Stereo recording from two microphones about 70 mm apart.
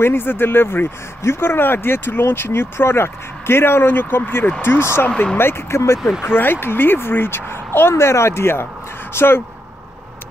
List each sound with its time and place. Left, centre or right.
0.0 s speech: left
5.0 s speech: centre
5.4 s speech: left